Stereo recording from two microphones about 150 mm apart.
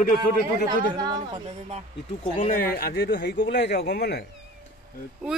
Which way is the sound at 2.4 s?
70° left (ahead or behind).